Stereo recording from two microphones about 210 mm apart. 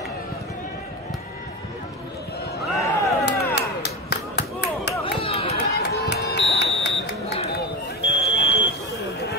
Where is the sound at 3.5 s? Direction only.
50° left (ahead or behind).